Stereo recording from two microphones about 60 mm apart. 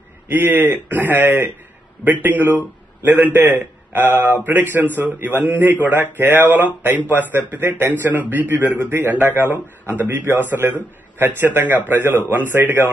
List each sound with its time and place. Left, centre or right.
0.3 s a man's voice: right